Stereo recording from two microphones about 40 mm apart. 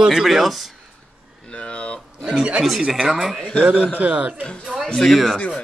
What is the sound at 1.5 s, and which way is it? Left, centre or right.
Boiling, left.